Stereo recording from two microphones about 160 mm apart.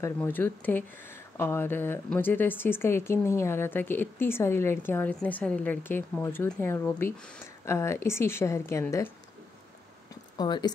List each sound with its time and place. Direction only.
0.0 s speech: 10° left (ahead or behind)
10.3 s speech: 25° left (ahead or behind)